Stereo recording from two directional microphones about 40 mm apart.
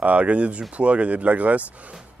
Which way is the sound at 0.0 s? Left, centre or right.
Right.